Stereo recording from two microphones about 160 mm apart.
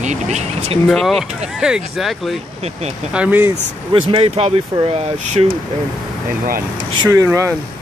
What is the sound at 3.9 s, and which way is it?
Speech, 35° right (ahead or behind).